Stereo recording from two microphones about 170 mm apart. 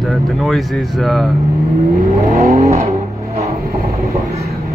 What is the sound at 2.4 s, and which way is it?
Vehicle, 20° right (ahead or behind).